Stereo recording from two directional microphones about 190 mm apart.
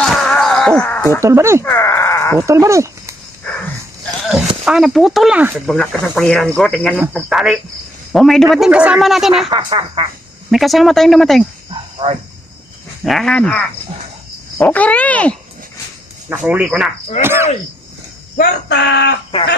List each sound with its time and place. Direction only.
0.0 s a sound: 5° left (ahead or behind)
1.2 s speech: 15° right (ahead or behind)
1.6 s a sound: 15° left (ahead or behind)
2.4 s speech: 15° right (ahead or behind)
3.4 s dog: 5° left (ahead or behind)
4.6 s speech: centre (ahead or behind)
5.8 s speech: 5° left (ahead or behind)
9.5 s speech: 25° right (ahead or behind)
10.5 s speech: centre (ahead or behind)
12.0 s speech: 25° right (ahead or behind)
13.0 s speech: centre (ahead or behind)
16.3 s speech: 5° right (ahead or behind)
18.4 s speech: 65° left (ahead or behind)